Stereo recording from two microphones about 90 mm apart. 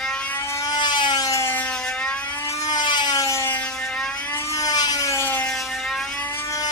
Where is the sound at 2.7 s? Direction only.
55° left (ahead or behind).